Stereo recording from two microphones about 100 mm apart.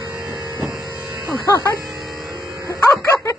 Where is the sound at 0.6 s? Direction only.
Centre (ahead or behind).